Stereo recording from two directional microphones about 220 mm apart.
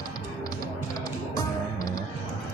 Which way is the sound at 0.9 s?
15° left (ahead or behind).